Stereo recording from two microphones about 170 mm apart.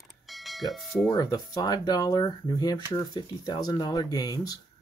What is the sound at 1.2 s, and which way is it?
Speech, 20° left (ahead or behind).